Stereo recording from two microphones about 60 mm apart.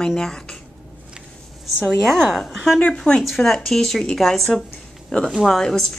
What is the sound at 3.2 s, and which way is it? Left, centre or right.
Speech, centre.